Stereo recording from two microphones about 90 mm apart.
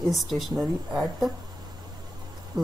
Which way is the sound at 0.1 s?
Centre (ahead or behind).